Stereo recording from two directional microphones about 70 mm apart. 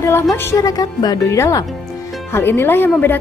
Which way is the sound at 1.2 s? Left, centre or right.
Left.